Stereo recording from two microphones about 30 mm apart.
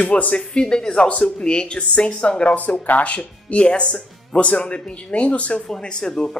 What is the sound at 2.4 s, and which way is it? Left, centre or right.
Speech, left.